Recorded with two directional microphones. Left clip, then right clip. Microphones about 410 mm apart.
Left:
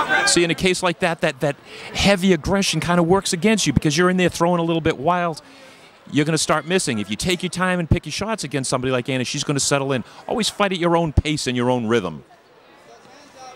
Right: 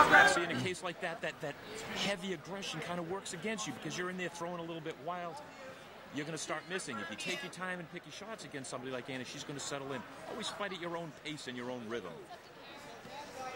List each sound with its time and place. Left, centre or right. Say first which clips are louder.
0.3 s speech: left 15 dB; left